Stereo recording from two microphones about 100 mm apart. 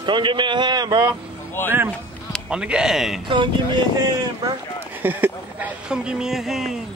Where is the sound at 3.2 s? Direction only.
55° right (ahead or behind).